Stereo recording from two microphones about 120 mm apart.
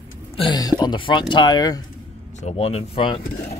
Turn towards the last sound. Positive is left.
turn(degrees=45)  # may be behind; listen again after turning